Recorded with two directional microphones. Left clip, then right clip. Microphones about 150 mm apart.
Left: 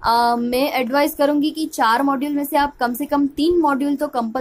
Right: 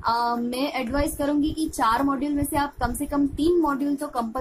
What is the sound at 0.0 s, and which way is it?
A woman's voice, 45° left (ahead or behind).